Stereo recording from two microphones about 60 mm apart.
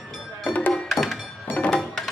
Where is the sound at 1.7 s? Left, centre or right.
Centre.